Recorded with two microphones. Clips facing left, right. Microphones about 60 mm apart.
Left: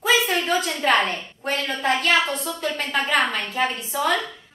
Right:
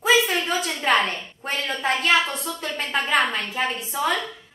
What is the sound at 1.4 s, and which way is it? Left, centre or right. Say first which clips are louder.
Speech: left 2 dB; centre.